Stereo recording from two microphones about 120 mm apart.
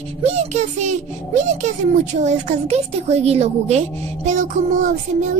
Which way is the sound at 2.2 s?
70° right (ahead or behind).